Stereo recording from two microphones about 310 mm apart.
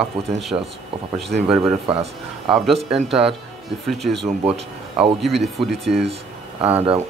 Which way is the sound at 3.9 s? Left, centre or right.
Centre.